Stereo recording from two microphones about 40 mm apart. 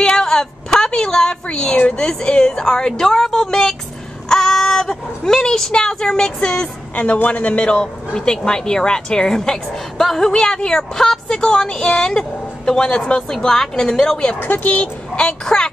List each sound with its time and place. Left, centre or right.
0.1 s a sound: centre
2.0 s speech: left
7.2 s speech: left
7.7 s speech: centre
10.3 s speech: centre
14.4 s speech: left
15.1 s speech: left